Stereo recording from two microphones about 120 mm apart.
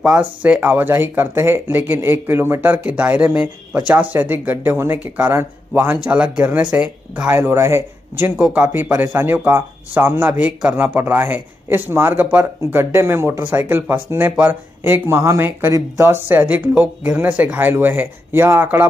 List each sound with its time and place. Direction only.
0.2 s speech: 10° right (ahead or behind)